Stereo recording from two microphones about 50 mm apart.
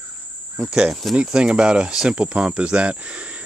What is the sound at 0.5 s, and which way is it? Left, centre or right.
Speech, centre.